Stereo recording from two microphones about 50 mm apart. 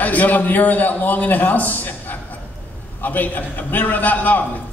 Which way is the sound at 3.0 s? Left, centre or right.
Left.